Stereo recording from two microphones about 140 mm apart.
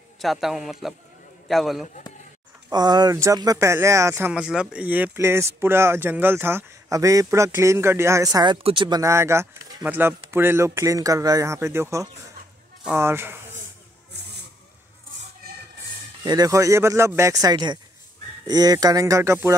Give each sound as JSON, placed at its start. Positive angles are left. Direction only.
{"t": 0.2, "sound": "a man's voice", "side_deg": 0}
{"t": 2.7, "sound": "a man's voice", "side_deg": -30}
{"t": 4.3, "sound": "speech", "side_deg": -5}
{"t": 9.0, "sound": "a man's voice", "side_deg": -20}
{"t": 16.3, "sound": "a man's voice", "side_deg": -25}